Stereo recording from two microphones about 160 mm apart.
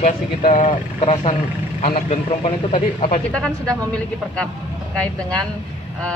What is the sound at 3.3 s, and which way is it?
Speech, 5° left (ahead or behind).